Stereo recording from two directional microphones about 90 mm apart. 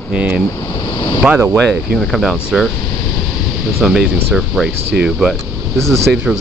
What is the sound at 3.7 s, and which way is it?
Speech, 5° right (ahead or behind).